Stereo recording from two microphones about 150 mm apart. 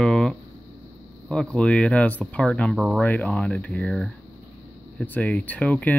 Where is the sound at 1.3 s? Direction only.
5° left (ahead or behind).